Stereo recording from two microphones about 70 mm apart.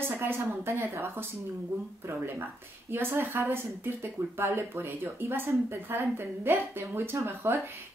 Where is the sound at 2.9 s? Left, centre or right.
Right.